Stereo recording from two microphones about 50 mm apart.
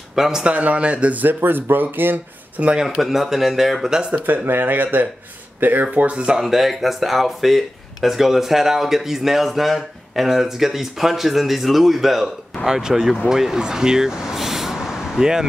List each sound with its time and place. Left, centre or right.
0.1 s speech: centre
0.4 s speech: right
1.2 s speech: right
2.8 s speech: centre
4.5 s speech: right
6.0 s speech: centre
6.4 s speech: centre